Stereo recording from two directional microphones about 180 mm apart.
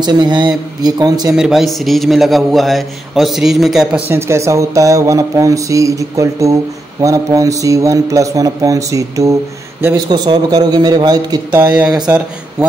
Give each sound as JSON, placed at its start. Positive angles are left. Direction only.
{"t": 0.0, "sound": "speech", "side_deg": -25}
{"t": 1.3, "sound": "a man's voice", "side_deg": 0}
{"t": 4.1, "sound": "a man's voice", "side_deg": -15}